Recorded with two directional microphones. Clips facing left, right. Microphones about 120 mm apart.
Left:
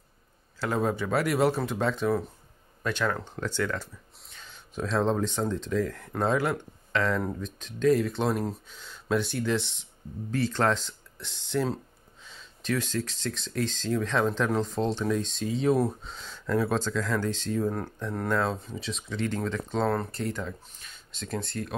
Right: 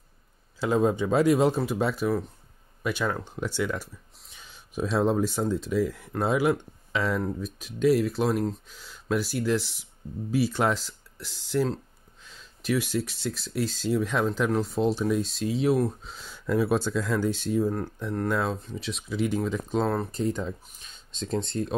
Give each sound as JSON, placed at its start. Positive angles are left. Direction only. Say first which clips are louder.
{"t": 0.6, "sound": "speech", "louder": "right 4 dB", "side_deg": -20}